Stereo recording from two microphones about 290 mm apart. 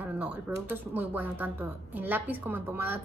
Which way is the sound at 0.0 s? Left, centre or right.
Centre.